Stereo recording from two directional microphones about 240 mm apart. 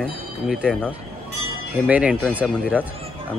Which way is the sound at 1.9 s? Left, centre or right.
Centre.